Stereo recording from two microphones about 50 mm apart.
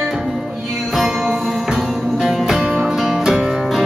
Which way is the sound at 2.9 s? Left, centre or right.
Centre.